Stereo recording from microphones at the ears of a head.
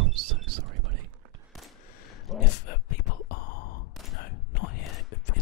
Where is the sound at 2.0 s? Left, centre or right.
Left.